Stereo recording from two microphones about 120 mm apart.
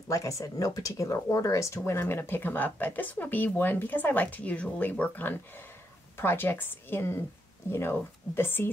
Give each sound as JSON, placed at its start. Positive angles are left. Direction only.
{"t": 0.1, "sound": "a woman's voice", "side_deg": 25}